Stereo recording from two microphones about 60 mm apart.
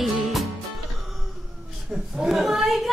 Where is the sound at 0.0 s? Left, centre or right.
Centre.